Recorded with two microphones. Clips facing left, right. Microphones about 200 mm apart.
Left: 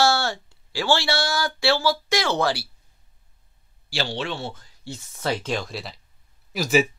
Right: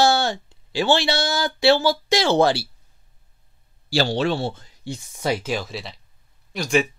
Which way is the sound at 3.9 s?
40° right (ahead or behind).